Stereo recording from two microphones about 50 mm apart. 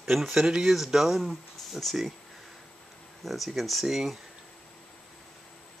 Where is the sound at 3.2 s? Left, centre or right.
Centre.